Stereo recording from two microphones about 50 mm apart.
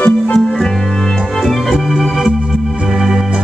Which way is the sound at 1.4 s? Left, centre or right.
Centre.